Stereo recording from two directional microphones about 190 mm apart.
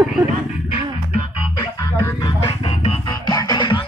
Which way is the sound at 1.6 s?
15° left (ahead or behind).